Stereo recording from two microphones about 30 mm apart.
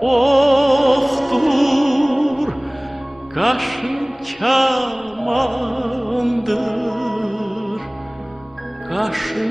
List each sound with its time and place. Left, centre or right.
0.0 s music: centre
8.9 s music: centre